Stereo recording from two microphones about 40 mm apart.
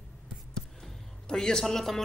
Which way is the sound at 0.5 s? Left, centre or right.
Centre.